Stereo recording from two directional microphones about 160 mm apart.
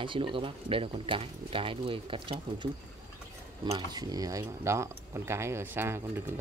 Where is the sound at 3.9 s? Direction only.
25° right (ahead or behind).